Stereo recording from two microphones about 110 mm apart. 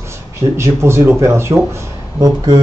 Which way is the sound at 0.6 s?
25° right (ahead or behind).